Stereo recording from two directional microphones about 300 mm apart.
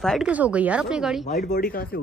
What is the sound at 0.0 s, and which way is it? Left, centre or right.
Speech, centre.